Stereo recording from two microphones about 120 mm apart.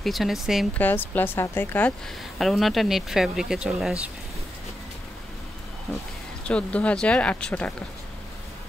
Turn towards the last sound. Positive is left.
turn(degrees=10)  # may be behind; listen again after turning